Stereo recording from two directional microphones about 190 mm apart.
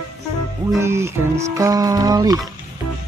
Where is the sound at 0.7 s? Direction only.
15° right (ahead or behind).